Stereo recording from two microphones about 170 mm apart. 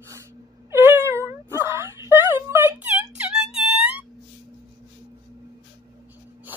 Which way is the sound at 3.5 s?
5° right (ahead or behind).